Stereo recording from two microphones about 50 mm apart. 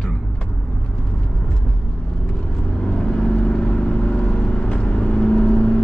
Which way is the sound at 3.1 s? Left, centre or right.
Centre.